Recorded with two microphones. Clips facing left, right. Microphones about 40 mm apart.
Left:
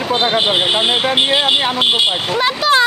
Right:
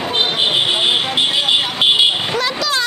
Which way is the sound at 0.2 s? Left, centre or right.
Centre.